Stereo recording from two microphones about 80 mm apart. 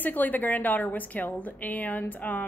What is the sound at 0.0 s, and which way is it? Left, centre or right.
A woman's voice, left.